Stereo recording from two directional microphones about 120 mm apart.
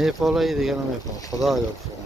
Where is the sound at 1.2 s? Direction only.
30° left (ahead or behind).